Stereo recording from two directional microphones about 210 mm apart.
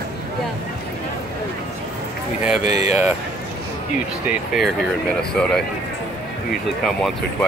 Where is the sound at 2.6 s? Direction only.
35° left (ahead or behind).